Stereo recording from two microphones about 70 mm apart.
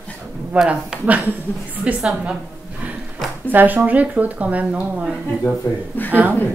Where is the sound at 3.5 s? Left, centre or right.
Right.